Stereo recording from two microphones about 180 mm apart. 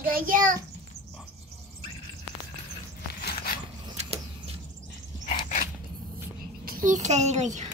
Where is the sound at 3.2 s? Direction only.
55° left (ahead or behind).